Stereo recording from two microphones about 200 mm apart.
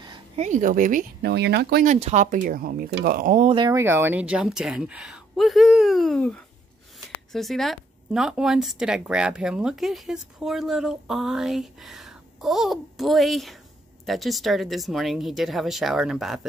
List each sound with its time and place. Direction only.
0.0 s a sound: 25° right (ahead or behind)
0.5 s speech: 40° right (ahead or behind)
1.3 s speech: 55° right (ahead or behind)
2.0 s speech: 30° right (ahead or behind)
2.4 s speech: 45° right (ahead or behind)
3.5 s speech: 15° right (ahead or behind)